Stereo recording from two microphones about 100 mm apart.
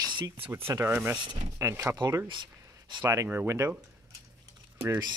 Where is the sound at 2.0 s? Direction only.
40° right (ahead or behind).